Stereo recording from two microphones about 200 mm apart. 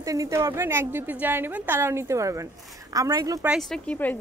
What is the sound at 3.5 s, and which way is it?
Speech, centre (ahead or behind).